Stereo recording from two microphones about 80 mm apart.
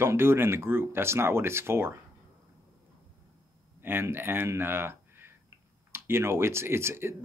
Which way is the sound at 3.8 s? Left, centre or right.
Right.